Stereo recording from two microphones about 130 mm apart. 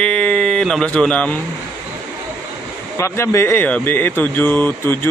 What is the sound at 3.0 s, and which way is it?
Speech, 20° left (ahead or behind).